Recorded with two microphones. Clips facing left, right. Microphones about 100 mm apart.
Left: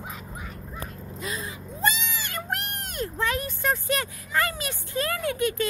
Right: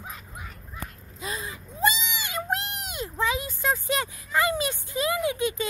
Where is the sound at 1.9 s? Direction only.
20° right (ahead or behind).